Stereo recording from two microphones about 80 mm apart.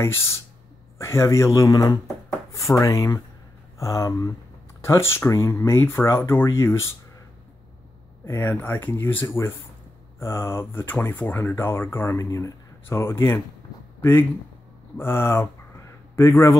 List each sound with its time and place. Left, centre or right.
0.9 s speech: left
4.8 s speech: left
8.3 s speech: left
12.2 s speech: left
15.0 s speech: left